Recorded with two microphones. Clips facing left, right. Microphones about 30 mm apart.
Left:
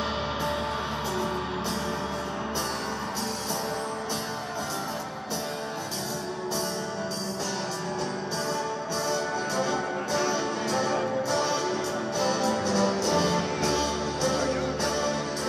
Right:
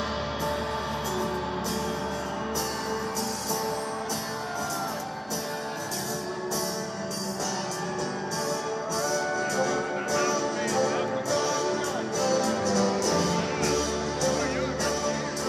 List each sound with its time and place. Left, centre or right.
9.1 s music: centre
14.4 s music: centre
14.8 s music: centre